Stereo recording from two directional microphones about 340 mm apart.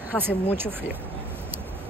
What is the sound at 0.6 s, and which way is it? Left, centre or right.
Speech, centre.